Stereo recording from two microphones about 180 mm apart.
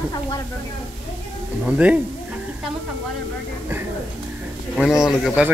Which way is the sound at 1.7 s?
5° right (ahead or behind).